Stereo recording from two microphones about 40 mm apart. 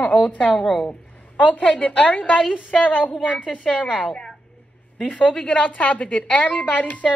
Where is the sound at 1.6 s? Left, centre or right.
Left.